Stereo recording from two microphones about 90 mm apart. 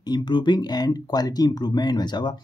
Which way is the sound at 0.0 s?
55° left (ahead or behind).